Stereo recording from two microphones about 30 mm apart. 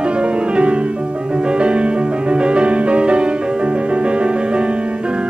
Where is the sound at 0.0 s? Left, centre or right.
Right.